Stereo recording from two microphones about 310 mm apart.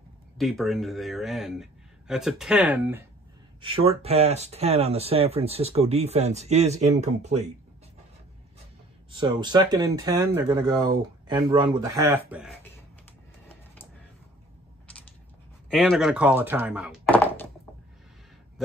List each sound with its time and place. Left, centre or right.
0.4 s a man's voice: centre
3.6 s speech: centre
9.1 s speech: centre
14.9 s creak: centre
15.7 s speech: centre